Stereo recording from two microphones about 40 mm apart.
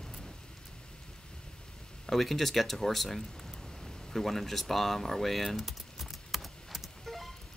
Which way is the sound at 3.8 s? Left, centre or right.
Centre.